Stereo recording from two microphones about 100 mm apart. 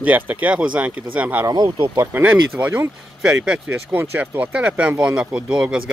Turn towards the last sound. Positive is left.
turn(degrees=-10)  # may be behind; listen again after turning